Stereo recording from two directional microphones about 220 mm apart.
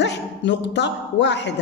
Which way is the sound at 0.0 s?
50° left (ahead or behind).